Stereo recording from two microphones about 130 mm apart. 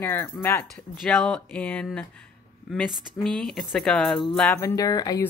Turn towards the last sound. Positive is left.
turn(degrees=30)  # may be behind; listen again after turning